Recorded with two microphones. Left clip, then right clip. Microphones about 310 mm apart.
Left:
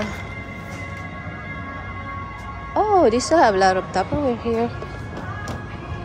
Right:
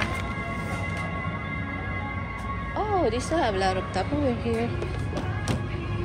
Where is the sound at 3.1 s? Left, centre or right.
Centre.